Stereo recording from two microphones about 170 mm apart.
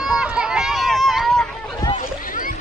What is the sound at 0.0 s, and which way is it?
Run, 5° right (ahead or behind).